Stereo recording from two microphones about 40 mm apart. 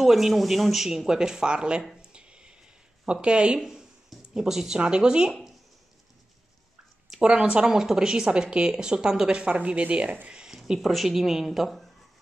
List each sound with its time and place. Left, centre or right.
0.0 s speech: centre; by 1.8 s right
2.0 s a sound: right
3.1 s speech: right
3.5 s speech: centre
4.8 s speech: right
7.1 s speech: right
7.6 s speech: centre; by 10.1 s right
10.2 s a sound: centre
10.8 s speech: centre